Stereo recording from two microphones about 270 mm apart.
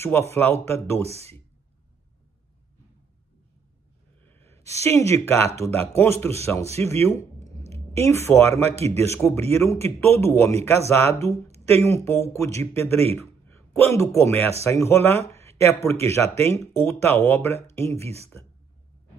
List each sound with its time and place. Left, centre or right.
0.0 s speech: centre
4.2 s a sound: centre
5.6 s speech: centre
8.7 s a man's voice: right
9.0 s speech: centre
12.7 s a man's voice: right
13.9 s speech: centre
15.2 s a sound: centre
15.8 s speech: centre
18.0 s a man's voice: right